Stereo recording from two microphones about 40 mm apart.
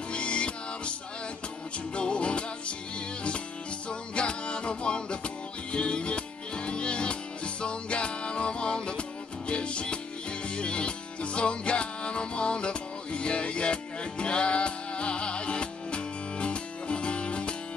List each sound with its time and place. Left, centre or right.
0.1 s music: left
2.0 s music: left
4.1 s music: left